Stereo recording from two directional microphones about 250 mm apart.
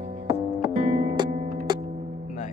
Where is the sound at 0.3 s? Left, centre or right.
Centre.